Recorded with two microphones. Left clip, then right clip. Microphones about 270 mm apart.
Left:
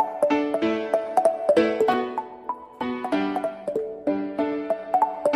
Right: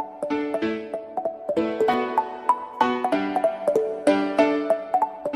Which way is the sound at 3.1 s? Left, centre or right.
Centre.